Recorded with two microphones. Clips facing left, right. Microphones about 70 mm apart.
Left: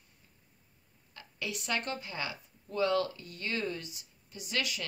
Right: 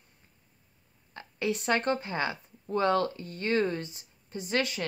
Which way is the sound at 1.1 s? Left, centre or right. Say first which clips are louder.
Right 9 dB; right.